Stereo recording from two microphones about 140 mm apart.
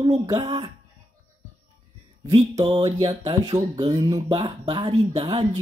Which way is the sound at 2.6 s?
35° right (ahead or behind).